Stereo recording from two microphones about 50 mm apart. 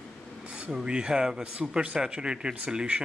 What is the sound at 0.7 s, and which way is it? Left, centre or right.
Speech, centre.